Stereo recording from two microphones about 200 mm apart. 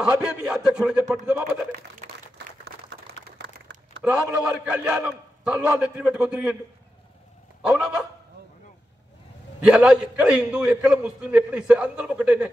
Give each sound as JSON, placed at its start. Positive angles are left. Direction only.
{"t": 0.0, "sound": "a man's voice", "side_deg": -5}
{"t": 1.8, "sound": "a sound", "side_deg": -55}
{"t": 4.3, "sound": "a man's voice", "side_deg": -5}
{"t": 7.6, "sound": "a man's voice", "side_deg": -5}
{"t": 9.6, "sound": "a man's voice", "side_deg": -5}